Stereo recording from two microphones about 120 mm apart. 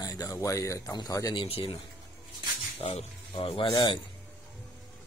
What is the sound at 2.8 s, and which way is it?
Speech, 50° left (ahead or behind).